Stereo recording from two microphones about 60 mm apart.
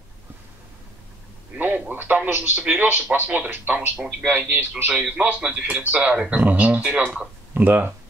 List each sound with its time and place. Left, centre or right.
1.6 s a man's voice: right
2.6 s a man's voice: right
5.1 s a man's voice: right